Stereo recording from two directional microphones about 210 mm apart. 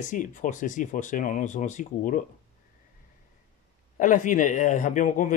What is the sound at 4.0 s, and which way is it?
Speech, 40° left (ahead or behind).